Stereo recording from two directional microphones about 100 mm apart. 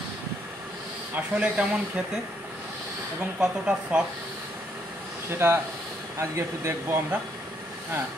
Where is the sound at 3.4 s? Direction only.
10° right (ahead or behind).